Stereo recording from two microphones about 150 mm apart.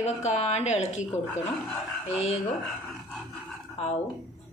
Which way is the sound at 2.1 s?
45° left (ahead or behind).